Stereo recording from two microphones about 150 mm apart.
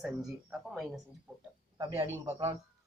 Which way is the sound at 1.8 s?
20° right (ahead or behind).